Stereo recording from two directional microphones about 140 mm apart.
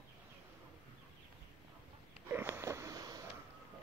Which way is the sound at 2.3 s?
15° right (ahead or behind).